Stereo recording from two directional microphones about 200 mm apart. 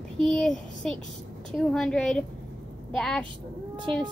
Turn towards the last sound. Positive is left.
turn(degrees=5)  # may be behind; listen again after turning